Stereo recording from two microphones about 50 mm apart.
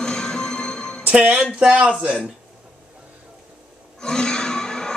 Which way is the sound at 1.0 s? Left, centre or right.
Right.